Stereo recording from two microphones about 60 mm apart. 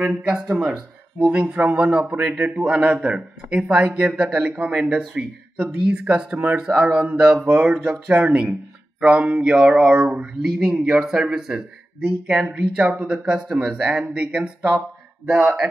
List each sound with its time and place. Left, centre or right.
0.1 s a man's voice: centre